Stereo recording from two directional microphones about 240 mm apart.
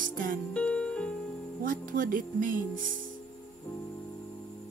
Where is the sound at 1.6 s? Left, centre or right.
Right.